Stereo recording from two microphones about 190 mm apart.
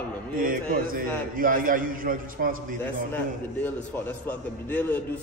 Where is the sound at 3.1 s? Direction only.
10° left (ahead or behind).